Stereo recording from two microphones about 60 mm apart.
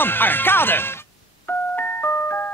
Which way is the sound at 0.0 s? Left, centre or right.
Left.